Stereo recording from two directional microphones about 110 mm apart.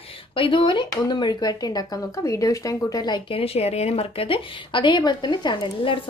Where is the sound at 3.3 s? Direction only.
60° left (ahead or behind).